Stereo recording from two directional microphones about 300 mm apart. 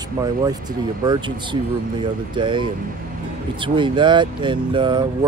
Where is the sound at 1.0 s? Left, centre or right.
Centre.